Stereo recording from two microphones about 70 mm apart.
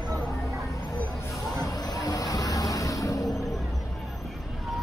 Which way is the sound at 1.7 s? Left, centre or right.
Left.